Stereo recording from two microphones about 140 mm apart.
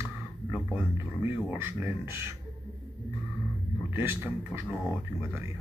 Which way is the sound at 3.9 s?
20° right (ahead or behind).